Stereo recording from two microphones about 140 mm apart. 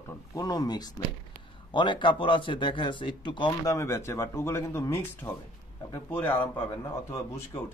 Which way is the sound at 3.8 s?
20° left (ahead or behind).